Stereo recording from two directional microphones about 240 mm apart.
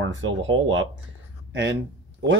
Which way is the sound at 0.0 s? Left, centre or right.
Right.